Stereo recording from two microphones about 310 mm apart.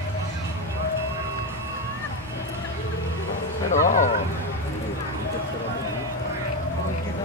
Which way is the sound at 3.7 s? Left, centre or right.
Left.